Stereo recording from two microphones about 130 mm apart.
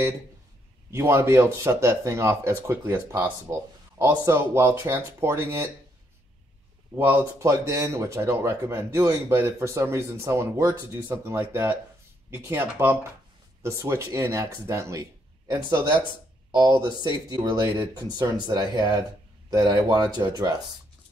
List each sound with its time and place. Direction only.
0.9 s speech: 20° right (ahead or behind)
7.0 s speech: 20° right (ahead or behind)